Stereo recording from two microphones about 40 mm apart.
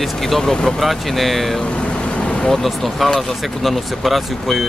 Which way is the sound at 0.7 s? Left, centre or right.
Centre.